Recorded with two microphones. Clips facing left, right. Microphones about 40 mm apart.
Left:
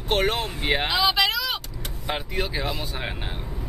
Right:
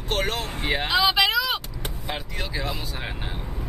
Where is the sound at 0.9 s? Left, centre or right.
Centre.